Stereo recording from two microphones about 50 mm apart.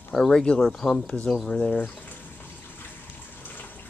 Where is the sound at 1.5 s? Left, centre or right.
Centre.